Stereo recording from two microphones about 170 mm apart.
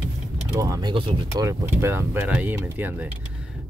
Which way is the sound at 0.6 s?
20° right (ahead or behind).